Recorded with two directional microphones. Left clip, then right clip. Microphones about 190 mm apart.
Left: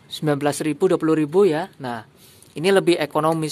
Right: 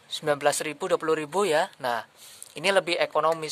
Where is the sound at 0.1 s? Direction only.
Centre (ahead or behind).